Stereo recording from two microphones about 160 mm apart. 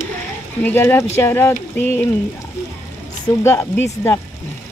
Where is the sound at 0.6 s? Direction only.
10° left (ahead or behind).